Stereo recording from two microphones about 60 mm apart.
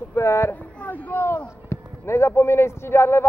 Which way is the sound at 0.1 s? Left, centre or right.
Left.